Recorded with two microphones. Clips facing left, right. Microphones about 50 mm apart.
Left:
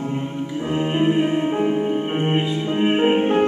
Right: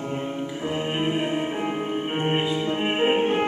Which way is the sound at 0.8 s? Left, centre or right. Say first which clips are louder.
Left 7 dB; centre.